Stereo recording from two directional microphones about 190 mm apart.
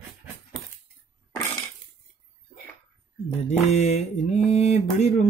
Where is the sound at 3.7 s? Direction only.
35° left (ahead or behind).